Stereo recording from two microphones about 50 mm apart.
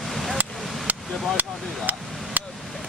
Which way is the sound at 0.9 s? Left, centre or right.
Right.